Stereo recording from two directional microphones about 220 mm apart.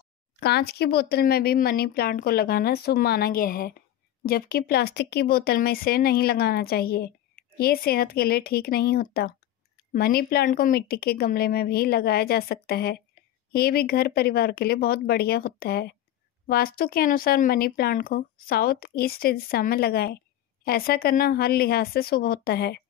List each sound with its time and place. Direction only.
0.4 s speech: 45° left (ahead or behind)